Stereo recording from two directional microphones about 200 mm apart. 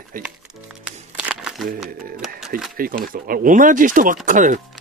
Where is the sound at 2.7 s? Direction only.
45° right (ahead or behind).